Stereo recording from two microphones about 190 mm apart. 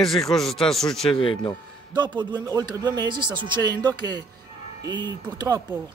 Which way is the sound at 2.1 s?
20° right (ahead or behind).